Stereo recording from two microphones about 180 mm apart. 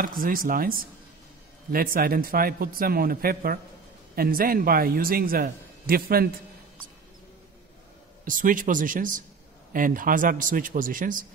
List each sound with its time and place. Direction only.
0.0 s a man's voice: 50° right (ahead or behind)
8.3 s a man's voice: 50° right (ahead or behind)